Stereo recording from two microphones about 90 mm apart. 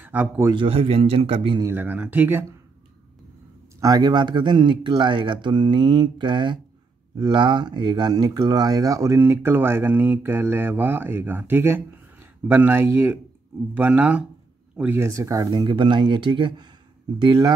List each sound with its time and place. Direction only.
0.0 s a sound: 20° right (ahead or behind)
0.6 s a man's voice: 90° right
1.7 s speech: 20° right (ahead or behind)
3.8 s speech: 45° right (ahead or behind)
9.2 s speech: 25° right (ahead or behind)
14.8 s speech: 25° right (ahead or behind)
15.5 s speech: 55° right (ahead or behind)